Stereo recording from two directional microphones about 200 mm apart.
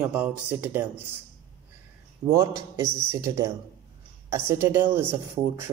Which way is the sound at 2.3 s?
15° right (ahead or behind).